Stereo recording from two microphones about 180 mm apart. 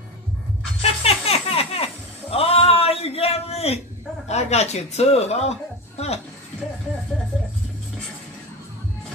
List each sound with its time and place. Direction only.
0.7 s music: 35° left (ahead or behind)
2.3 s a sound: 35° left (ahead or behind)
4.3 s speech: 35° left (ahead or behind)